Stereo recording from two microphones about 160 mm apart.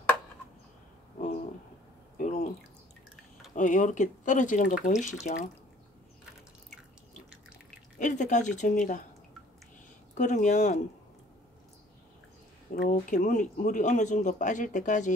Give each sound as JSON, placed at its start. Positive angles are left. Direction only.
{"t": 2.1, "sound": "drip", "side_deg": 50}
{"t": 3.5, "sound": "speech", "side_deg": 50}
{"t": 8.0, "sound": "speech", "side_deg": 50}
{"t": 10.1, "sound": "speech", "side_deg": 50}
{"t": 12.7, "sound": "speech", "side_deg": 90}
{"t": 13.1, "sound": "speech", "side_deg": 50}